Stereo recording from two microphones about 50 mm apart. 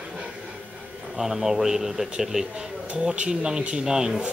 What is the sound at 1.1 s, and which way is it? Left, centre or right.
A man's voice, centre.